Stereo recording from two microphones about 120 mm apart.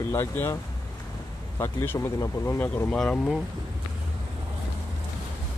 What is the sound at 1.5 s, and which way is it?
Speech, 20° left (ahead or behind).